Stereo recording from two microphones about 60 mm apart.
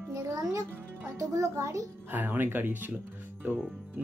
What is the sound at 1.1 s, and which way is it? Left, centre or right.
Speech, right.